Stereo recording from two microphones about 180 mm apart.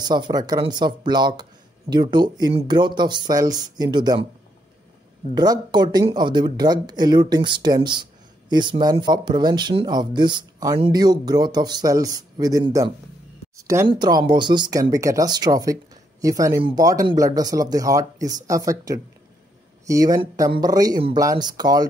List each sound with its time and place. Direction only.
0.0 s speech: 25° right (ahead or behind)
5.3 s speech: 20° right (ahead or behind)